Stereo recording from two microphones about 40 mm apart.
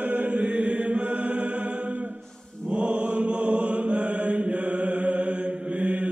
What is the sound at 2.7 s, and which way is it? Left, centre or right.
Mantra, right.